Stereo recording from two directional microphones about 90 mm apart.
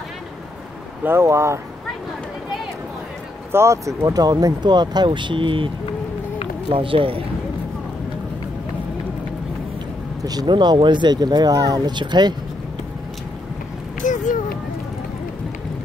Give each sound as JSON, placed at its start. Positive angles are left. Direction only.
{"t": 1.0, "sound": "speech", "side_deg": -30}
{"t": 3.5, "sound": "speech", "side_deg": -35}
{"t": 6.7, "sound": "speech", "side_deg": -80}
{"t": 10.2, "sound": "speech", "side_deg": -50}